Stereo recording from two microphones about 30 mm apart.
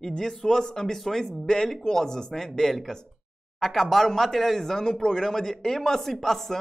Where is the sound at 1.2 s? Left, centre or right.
Left.